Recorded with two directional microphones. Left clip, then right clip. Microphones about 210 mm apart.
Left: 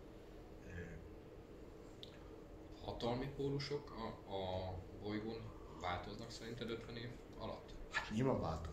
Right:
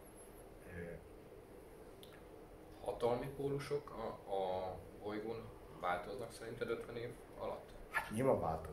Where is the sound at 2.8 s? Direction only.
15° left (ahead or behind).